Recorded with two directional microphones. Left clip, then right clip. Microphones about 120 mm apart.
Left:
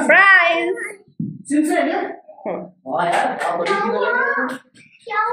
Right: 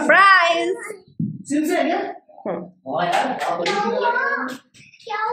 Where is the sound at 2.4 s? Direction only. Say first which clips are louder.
Left 1 dB; 30° right (ahead or behind).